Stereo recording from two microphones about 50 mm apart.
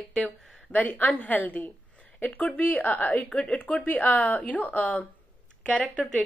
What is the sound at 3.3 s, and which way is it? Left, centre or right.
Speech, centre.